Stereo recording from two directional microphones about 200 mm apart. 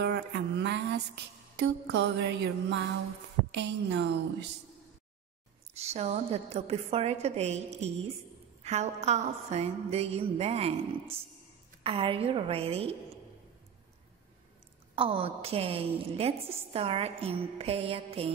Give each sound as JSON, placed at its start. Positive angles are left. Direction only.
{"t": 0.0, "sound": "music", "side_deg": -55}
{"t": 3.5, "sound": "a woman's voice", "side_deg": -60}
{"t": 5.8, "sound": "a sound", "side_deg": -30}
{"t": 11.8, "sound": "a woman's voice", "side_deg": -25}
{"t": 15.0, "sound": "a woman's voice", "side_deg": -25}